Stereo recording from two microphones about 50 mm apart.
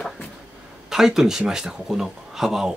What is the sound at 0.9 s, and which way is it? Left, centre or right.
A man's voice, centre.